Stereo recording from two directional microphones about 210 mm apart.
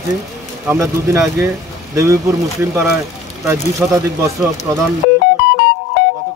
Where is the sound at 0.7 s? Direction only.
10° right (ahead or behind).